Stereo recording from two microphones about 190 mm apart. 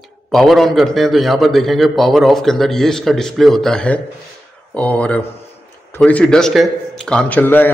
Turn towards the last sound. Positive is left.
turn(degrees=10)  # may be behind; listen again after turning